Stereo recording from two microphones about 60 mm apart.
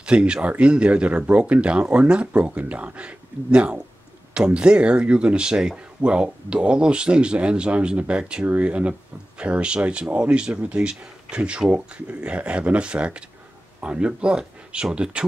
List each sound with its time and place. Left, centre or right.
0.0 s speech: centre